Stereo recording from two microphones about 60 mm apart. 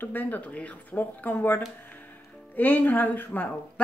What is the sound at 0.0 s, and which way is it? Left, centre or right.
Speech, left.